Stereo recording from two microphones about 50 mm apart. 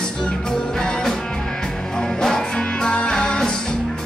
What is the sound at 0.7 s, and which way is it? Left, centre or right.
Music, centre.